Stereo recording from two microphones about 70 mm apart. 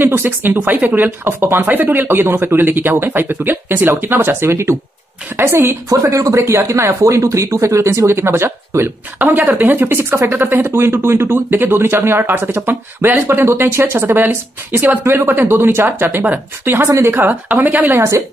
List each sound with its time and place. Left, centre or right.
0.0 s speech: right
5.9 s a woman's voice: right